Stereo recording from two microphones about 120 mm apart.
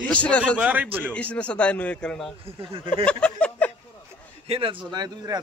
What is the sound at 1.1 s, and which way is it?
A man's voice, 10° left (ahead or behind).